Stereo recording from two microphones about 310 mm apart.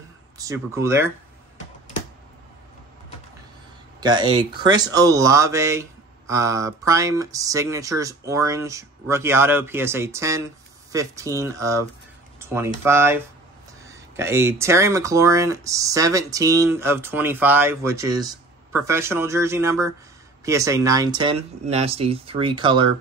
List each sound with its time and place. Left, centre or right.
0.4 s speech: centre
4.0 s speech: centre